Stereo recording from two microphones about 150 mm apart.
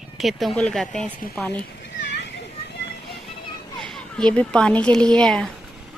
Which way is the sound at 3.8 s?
5° left (ahead or behind).